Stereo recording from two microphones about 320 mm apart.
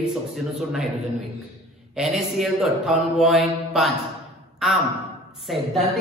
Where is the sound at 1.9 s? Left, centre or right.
Centre.